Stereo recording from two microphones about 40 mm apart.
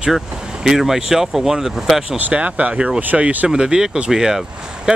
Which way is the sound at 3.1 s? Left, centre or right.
Centre.